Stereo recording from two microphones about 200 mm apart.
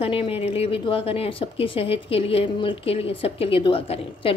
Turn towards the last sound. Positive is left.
turn(degrees=30)  # may be behind; listen again after turning